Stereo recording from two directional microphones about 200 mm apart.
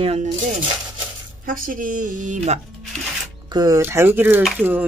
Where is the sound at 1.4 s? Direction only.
45° right (ahead or behind).